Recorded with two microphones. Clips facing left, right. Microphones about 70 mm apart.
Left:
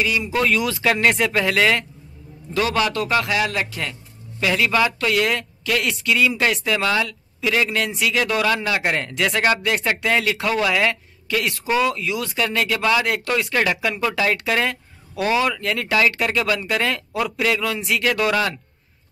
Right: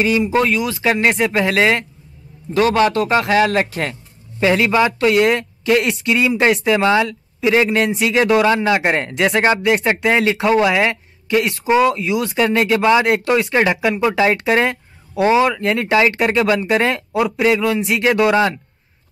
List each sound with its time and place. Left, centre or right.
0.0 s a man's voice: right